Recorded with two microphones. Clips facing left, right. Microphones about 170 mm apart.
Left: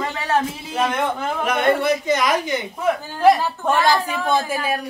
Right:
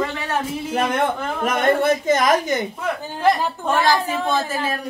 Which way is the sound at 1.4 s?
45° right (ahead or behind).